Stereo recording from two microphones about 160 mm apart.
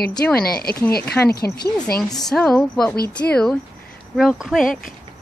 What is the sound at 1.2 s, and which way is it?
Speech, 80° left.